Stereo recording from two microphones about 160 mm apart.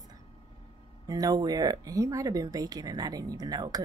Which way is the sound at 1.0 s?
25° right (ahead or behind).